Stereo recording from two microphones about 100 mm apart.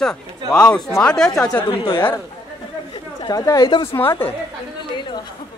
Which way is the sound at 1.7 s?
60° left (ahead or behind).